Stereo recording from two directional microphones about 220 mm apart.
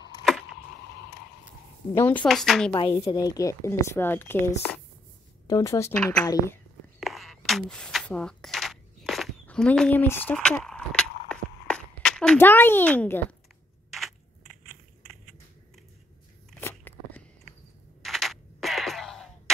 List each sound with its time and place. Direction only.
0.2 s a sound: centre (ahead or behind)
2.0 s speech: 5° left (ahead or behind)
2.7 s a woman's voice: 20° left (ahead or behind)
7.0 s coin: centre (ahead or behind)
13.8 s crushing: centre (ahead or behind)
16.5 s crunch: 10° left (ahead or behind)
18.0 s a sound: centre (ahead or behind)